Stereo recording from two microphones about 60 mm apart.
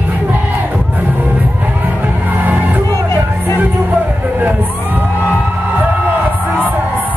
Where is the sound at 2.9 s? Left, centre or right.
Left.